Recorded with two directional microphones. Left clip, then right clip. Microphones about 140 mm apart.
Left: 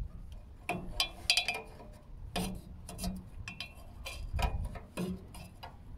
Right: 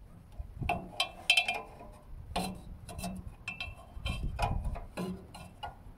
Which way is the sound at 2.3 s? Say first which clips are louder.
Right 3 dB; 20° left (ahead or behind).